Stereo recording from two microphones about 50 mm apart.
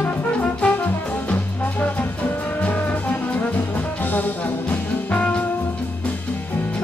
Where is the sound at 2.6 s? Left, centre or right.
Left.